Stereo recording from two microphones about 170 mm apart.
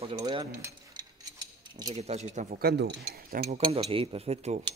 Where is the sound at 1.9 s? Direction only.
40° right (ahead or behind).